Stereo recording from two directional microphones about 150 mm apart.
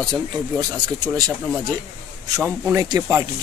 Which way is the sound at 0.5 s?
30° right (ahead or behind).